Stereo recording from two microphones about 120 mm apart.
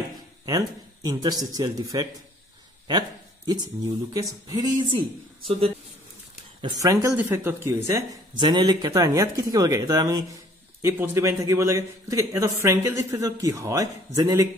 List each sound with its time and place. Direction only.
0.5 s speech: 35° right (ahead or behind)
6.8 s speech: 30° right (ahead or behind)
8.4 s speech: 35° right (ahead or behind)